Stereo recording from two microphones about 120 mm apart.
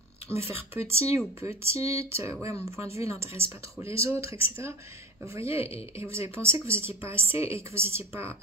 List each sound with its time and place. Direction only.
0.3 s speech: 20° right (ahead or behind)
1.8 s speech: 60° left (ahead or behind)
2.0 s speech: 25° right (ahead or behind)